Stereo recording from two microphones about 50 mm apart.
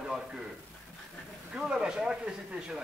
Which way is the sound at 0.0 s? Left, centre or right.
Centre.